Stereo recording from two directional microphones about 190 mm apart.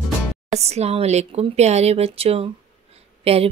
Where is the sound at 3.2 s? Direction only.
30° right (ahead or behind).